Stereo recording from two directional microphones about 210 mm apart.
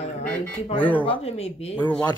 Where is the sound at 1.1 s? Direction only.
30° left (ahead or behind).